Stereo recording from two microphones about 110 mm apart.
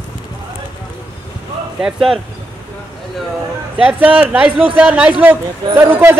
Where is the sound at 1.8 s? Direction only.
5° right (ahead or behind).